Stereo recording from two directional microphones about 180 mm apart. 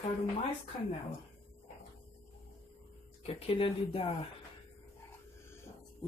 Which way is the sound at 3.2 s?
35° left (ahead or behind).